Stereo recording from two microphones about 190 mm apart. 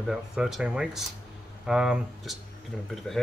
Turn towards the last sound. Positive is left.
turn(degrees=0)  # may be behind; listen again after turning